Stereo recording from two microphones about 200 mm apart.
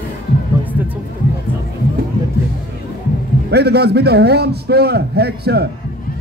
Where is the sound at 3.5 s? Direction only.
55° right (ahead or behind).